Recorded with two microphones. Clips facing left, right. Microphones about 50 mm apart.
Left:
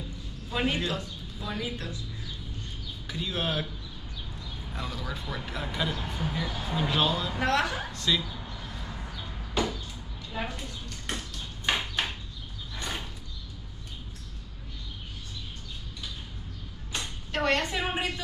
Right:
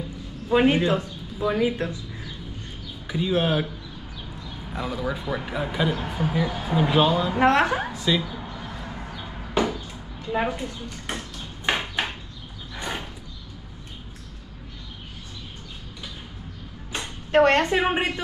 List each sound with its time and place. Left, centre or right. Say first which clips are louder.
0.5 s speech: right 10 dB; right
3.1 s speech: right 9 dB; centre
4.7 s speech: right 8 dB; centre
7.3 s a woman's voice: right 9 dB; right
7.9 s speech: right 5 dB; centre
8.2 s a sound: right 6 dB; right
10.5 s ping: right 7 dB; right
12.7 s horse: right 5 dB; right
16.9 s speech: right 12 dB; right